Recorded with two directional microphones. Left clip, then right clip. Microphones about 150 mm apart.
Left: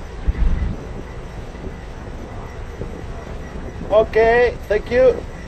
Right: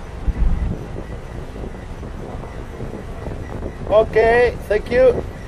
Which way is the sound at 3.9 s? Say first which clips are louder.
Even; 15° right (ahead or behind).